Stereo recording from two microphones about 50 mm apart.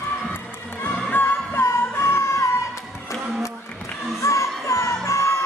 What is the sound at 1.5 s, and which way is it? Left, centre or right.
Music, left.